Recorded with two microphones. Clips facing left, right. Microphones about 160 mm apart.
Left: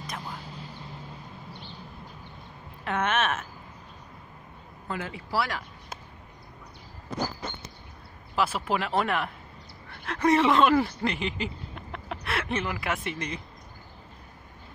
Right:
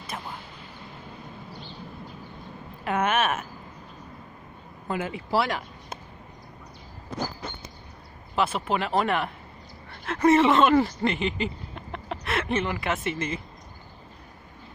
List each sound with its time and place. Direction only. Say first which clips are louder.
2.8 s a woman's voice: right 2 dB; 10° right (ahead or behind)
4.8 s speech: right 5 dB; 20° right (ahead or behind)
8.4 s speech: right 1 dB; 5° left (ahead or behind)